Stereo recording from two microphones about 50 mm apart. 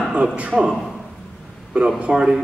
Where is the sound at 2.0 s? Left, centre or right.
Centre.